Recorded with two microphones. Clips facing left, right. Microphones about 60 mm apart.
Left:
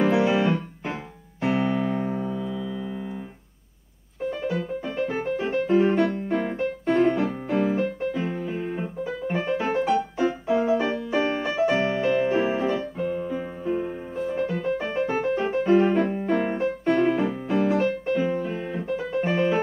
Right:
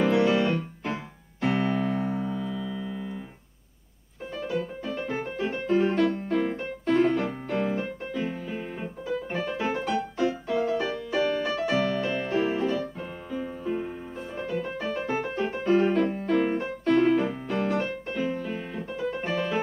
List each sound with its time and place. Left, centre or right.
0.0 s keyboard: centre
1.4 s music: centre
4.8 s music: centre
6.2 s piano: centre
8.2 s piano: centre
9.5 s music: centre
10.1 s piano: centre
11.4 s music: centre
13.0 s keyboard: centre
14.1 s music: centre
15.7 s piano: centre
18.2 s music: centre
18.7 s music: centre